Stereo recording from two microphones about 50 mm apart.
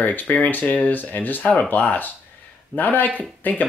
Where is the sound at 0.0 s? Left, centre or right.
Left.